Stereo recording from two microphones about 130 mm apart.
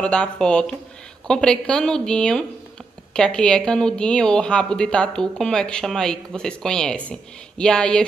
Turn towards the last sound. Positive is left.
turn(degrees=5)  # may be behind; listen again after turning